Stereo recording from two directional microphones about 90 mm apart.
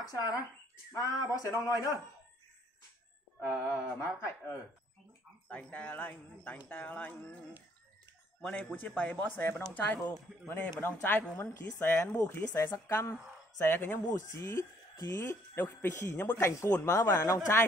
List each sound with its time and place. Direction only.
0.1 s speech: 40° left (ahead or behind)
3.3 s a woman's voice: 25° left (ahead or behind)
5.5 s a woman's voice: 15° left (ahead or behind); by 15.3 s 40° left (ahead or behind)
15.5 s a woman's voice: 25° left (ahead or behind)
16.3 s speech: 35° left (ahead or behind)